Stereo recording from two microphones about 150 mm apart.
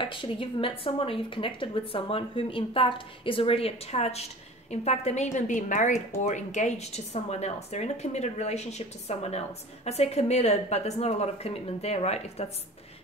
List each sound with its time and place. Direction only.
0.0 s a woman's voice: 35° left (ahead or behind)